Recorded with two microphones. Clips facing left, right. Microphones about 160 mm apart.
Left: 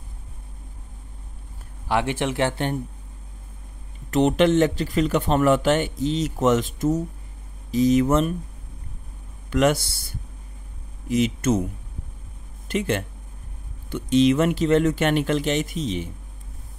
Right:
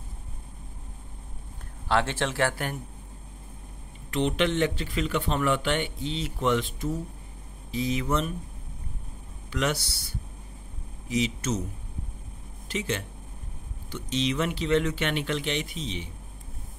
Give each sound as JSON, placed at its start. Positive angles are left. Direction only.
{"t": 1.9, "sound": "speech", "side_deg": 15}
{"t": 4.1, "sound": "a man's voice", "side_deg": 45}
{"t": 9.5, "sound": "a man's voice", "side_deg": 50}
{"t": 12.6, "sound": "a man's voice", "side_deg": 55}